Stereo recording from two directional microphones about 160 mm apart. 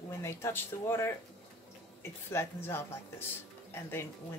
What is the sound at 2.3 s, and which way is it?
Speech, 15° left (ahead or behind).